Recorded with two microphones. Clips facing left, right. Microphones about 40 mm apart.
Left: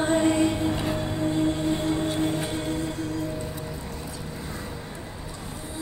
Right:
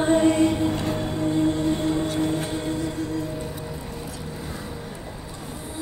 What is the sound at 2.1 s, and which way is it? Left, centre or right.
Music, left.